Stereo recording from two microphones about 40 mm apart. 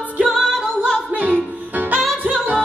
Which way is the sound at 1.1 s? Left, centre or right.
Right.